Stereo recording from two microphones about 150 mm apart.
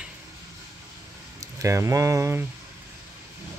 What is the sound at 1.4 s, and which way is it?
Speech, 20° right (ahead or behind).